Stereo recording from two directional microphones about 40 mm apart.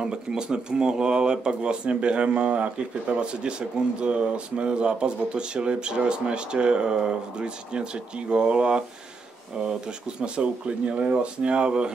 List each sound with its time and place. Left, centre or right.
0.0 s speech: centre
10.2 s speech: right